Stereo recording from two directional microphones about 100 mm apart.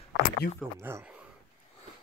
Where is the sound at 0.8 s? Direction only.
25° right (ahead or behind).